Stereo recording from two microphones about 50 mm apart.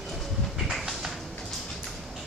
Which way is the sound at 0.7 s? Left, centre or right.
Centre.